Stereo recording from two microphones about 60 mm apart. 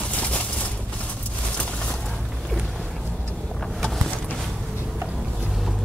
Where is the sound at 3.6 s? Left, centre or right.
Centre.